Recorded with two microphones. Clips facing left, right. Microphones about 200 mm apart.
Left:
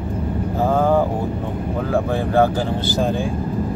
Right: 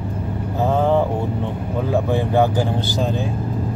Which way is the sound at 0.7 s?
25° right (ahead or behind).